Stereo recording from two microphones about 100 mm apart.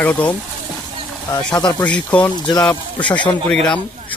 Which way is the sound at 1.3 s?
45° left (ahead or behind).